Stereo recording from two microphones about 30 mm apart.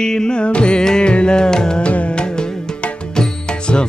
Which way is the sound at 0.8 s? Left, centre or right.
Left.